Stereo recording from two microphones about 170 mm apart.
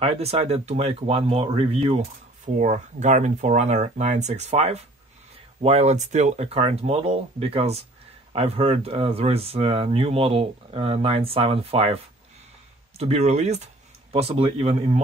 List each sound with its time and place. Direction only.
0.0 s speech: 35° right (ahead or behind)
2.4 s speech: 45° right (ahead or behind)